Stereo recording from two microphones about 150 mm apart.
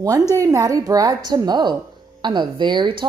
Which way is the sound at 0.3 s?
20° right (ahead or behind).